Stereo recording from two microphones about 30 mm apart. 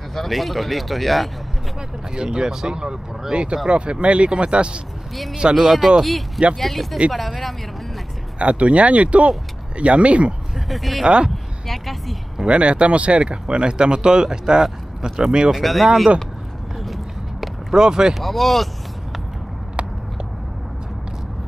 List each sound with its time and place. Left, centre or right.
0.1 s speech: centre
2.3 s speech: right
5.3 s speech: right
5.7 s speech: centre
6.0 s speech: centre
8.4 s speech: right
10.7 s speech: centre
11.6 s a sound: centre
12.4 s speech: right
15.5 s speech: centre
16.8 s a sound: centre
17.7 s speech: right
18.2 s speech: centre